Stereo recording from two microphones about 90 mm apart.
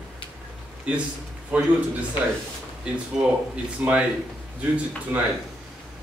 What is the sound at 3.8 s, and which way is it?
Speech, 15° right (ahead or behind).